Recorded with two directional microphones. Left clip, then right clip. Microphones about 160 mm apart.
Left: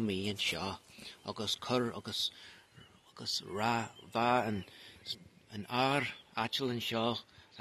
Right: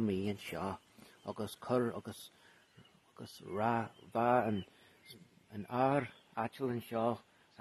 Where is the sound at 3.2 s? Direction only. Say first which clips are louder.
Left 3 dB; 40° right (ahead or behind).